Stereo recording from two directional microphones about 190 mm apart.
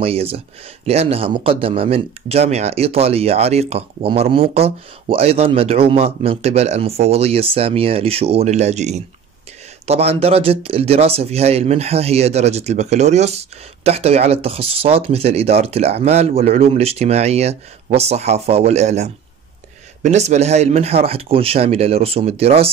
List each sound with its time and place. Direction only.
0.0 s speech: 30° right (ahead or behind)